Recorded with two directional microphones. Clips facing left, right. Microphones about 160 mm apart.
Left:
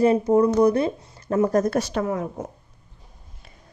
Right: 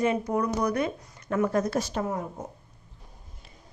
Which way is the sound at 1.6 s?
65° left (ahead or behind).